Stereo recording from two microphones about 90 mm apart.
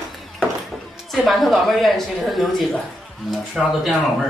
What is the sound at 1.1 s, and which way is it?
Speech, centre (ahead or behind).